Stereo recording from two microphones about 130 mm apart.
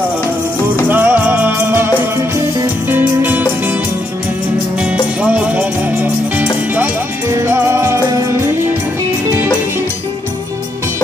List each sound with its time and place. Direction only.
0.8 s music: 15° right (ahead or behind)
2.9 s music: 15° right (ahead or behind)
5.2 s music: 10° right (ahead or behind)